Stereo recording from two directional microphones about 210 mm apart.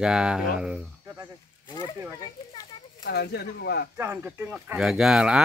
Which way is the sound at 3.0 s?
50° left (ahead or behind).